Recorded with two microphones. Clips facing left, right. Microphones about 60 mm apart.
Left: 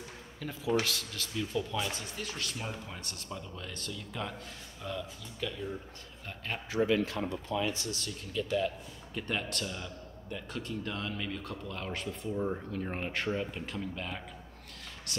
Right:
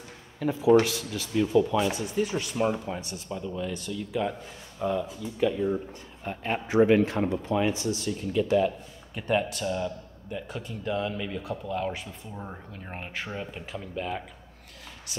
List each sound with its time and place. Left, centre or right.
0.4 s a man's voice: centre
1.3 s speech: right
2.0 s a man's voice: centre
2.5 s speech: right
3.0 s a man's voice: centre
4.7 s speech: right
7.7 s a man's voice: centre